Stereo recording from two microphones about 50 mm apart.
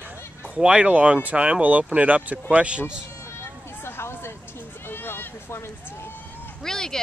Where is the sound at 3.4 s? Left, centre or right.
Left.